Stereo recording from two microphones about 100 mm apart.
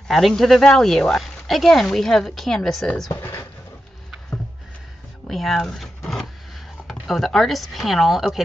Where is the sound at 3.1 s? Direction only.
25° left (ahead or behind).